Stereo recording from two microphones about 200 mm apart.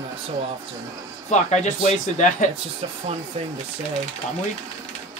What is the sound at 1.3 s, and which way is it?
Speech, 35° left (ahead or behind).